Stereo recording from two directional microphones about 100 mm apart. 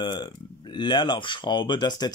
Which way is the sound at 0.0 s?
50° left (ahead or behind).